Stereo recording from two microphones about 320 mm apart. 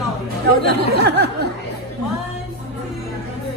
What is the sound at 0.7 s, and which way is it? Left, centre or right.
Speech, right.